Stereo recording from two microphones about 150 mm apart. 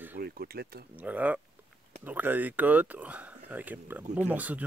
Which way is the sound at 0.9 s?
10° right (ahead or behind).